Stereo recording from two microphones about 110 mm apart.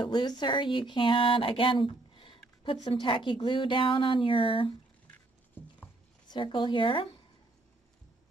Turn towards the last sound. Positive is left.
turn(degrees=50)  # may be behind; listen again after turning